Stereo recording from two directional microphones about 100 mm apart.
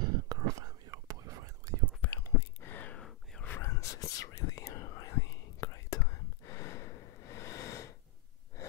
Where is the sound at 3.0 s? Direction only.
5° left (ahead or behind).